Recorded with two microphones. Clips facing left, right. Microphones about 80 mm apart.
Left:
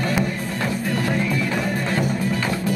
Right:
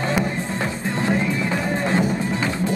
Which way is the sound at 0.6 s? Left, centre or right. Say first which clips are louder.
Left 2 dB; right.